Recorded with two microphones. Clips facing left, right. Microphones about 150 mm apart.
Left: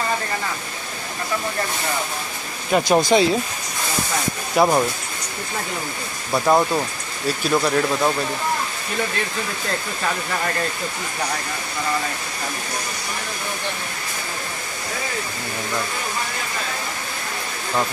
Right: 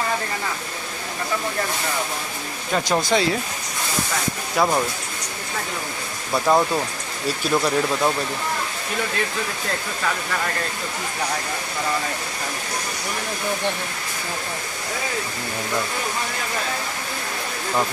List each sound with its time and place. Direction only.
2.7 s speech: 15° left (ahead or behind)
4.6 s speech: 15° left (ahead or behind)
6.3 s speech: 5° left (ahead or behind)